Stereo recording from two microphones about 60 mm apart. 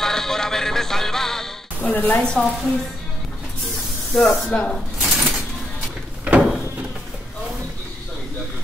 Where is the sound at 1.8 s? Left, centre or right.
Left.